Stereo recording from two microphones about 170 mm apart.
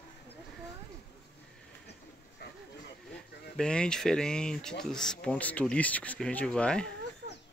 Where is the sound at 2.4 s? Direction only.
70° left (ahead or behind).